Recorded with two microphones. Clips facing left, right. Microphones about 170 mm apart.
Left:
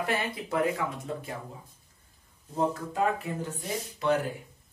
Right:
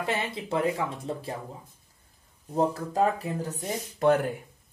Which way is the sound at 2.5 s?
35° right (ahead or behind).